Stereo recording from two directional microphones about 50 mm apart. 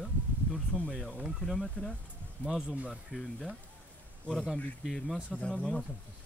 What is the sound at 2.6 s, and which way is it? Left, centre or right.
Speech, right.